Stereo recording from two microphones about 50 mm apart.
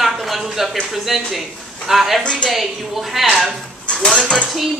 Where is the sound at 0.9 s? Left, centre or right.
Centre.